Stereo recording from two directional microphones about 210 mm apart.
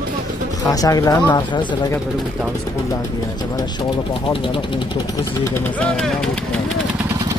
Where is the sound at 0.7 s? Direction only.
15° left (ahead or behind).